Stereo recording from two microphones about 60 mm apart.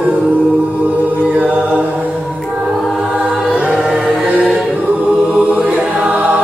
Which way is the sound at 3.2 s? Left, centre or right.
Centre.